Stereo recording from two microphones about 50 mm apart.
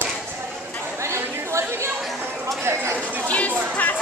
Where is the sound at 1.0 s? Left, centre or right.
Right.